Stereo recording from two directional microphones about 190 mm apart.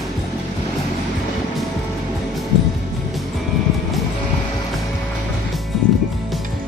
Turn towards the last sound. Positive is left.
turn(degrees=0)  # may be behind; listen again after turning